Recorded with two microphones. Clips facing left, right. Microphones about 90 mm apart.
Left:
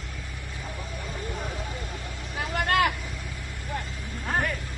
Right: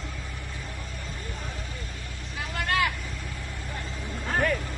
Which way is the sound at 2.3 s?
55° left (ahead or behind).